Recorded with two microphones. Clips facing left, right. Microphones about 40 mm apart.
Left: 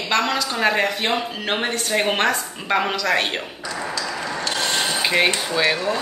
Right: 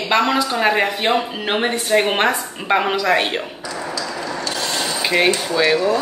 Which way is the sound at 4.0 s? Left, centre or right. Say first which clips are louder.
Right 1 dB; left.